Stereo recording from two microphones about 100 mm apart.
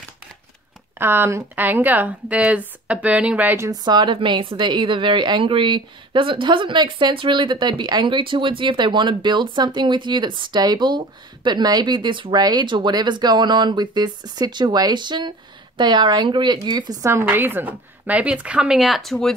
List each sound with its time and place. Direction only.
0.9 s a woman's voice: 20° right (ahead or behind)
3.8 s a woman's voice: 45° right (ahead or behind)
17.1 s a woman's voice: 20° right (ahead or behind); by 19.3 s 5° left (ahead or behind)